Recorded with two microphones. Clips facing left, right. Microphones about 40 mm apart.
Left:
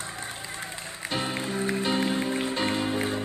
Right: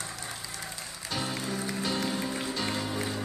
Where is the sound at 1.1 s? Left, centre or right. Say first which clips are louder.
Left 3 dB; left.